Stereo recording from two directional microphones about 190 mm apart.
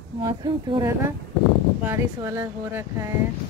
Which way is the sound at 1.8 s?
10° right (ahead or behind).